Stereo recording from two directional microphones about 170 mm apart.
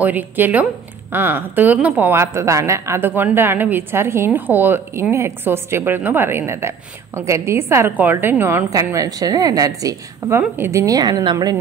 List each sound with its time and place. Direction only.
0.0 s a woman's voice: 10° right (ahead or behind)